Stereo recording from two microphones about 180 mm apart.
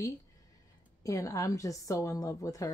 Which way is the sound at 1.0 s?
20° left (ahead or behind).